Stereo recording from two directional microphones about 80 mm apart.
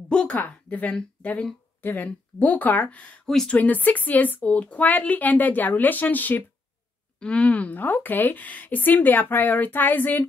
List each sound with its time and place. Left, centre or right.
0.1 s speech: centre
3.3 s speech: centre
3.5 s speech: centre